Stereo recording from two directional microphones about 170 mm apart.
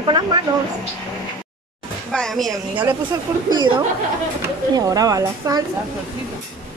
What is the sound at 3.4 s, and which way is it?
Speech, 30° right (ahead or behind).